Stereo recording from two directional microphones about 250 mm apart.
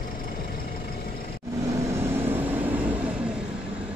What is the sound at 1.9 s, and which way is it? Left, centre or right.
Vehicle, centre.